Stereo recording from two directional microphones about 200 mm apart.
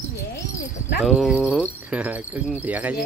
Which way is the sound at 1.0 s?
Centre (ahead or behind).